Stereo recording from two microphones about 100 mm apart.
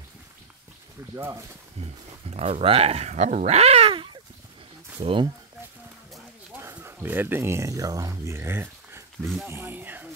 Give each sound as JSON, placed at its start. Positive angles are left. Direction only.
{"t": 1.1, "sound": "speech", "side_deg": -30}
{"t": 1.8, "sound": "speech", "side_deg": -80}
{"t": 3.9, "sound": "a sound", "side_deg": -55}
{"t": 5.0, "sound": "speech", "side_deg": -65}
{"t": 6.5, "sound": "speech", "side_deg": -25}
{"t": 9.2, "sound": "speech", "side_deg": 0}
{"t": 9.5, "sound": "speech", "side_deg": -20}